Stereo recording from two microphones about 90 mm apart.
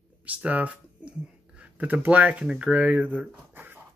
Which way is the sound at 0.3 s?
15° right (ahead or behind).